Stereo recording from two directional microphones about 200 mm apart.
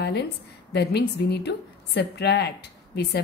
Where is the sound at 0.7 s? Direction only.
55° left (ahead or behind).